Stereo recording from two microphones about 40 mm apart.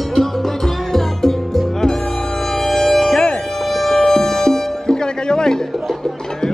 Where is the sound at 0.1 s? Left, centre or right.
Centre.